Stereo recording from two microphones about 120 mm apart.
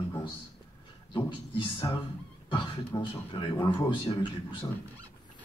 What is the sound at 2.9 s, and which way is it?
Speech, 40° left (ahead or behind).